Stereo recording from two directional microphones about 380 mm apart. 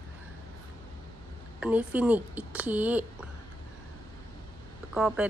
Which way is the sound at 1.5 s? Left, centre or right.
Centre.